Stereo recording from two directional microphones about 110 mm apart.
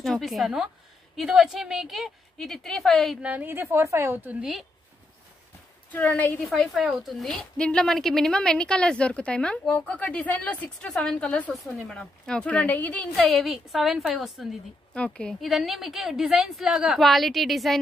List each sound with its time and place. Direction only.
0.0 s a woman's voice: centre (ahead or behind)
3.2 s a woman's voice: 15° right (ahead or behind)
5.9 s a woman's voice: 15° left (ahead or behind)
6.4 s a woman's voice: centre (ahead or behind)
15.0 s a woman's voice: 10° left (ahead or behind)